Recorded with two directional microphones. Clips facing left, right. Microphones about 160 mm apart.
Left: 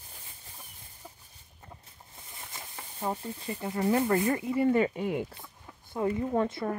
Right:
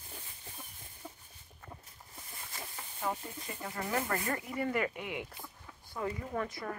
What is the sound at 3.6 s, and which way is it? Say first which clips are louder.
Speech: left 9 dB; 25° left (ahead or behind).